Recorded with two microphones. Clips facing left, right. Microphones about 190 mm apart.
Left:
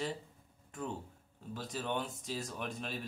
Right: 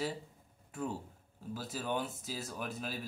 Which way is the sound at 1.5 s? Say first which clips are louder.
Right 1 dB; 5° right (ahead or behind).